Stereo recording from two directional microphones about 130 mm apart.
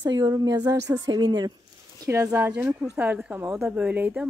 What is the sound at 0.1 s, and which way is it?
A woman's voice, 30° right (ahead or behind).